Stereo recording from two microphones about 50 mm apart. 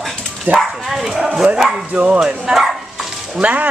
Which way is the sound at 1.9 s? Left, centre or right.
Centre.